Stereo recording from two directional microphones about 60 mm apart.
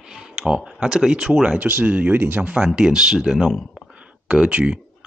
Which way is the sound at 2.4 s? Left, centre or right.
Centre.